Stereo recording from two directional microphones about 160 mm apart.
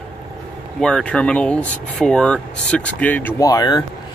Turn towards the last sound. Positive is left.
turn(degrees=25)  # may be behind; listen again after turning